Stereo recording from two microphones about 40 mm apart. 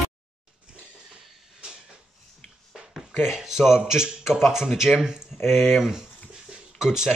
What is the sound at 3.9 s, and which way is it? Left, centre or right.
Speech, centre.